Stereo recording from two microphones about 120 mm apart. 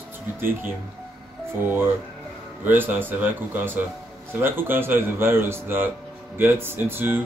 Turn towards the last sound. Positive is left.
turn(degrees=-20)  # may be behind; listen again after turning